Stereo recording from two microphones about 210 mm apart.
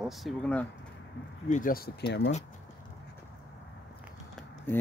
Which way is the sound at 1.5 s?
40° left (ahead or behind).